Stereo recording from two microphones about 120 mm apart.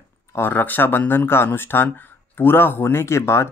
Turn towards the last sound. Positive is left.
turn(degrees=20)  # may be behind; listen again after turning